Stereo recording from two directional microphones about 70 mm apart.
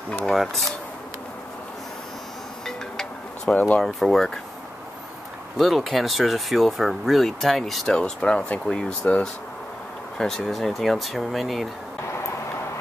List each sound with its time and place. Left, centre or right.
0.2 s speech: centre
2.6 s music: centre
3.5 s speech: centre
3.8 s speech: centre
5.6 s speech: centre
10.1 s speech: centre